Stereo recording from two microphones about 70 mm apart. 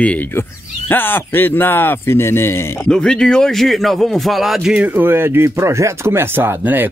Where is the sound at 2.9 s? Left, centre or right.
Centre.